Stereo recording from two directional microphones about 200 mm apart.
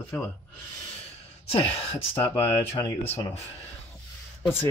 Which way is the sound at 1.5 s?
30° left (ahead or behind).